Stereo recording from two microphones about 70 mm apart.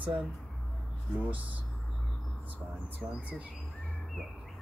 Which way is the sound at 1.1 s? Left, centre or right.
Right.